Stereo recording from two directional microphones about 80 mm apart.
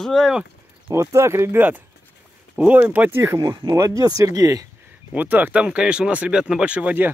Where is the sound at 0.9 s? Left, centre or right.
Right.